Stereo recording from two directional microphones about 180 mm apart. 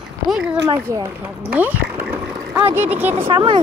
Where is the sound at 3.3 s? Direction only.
30° right (ahead or behind).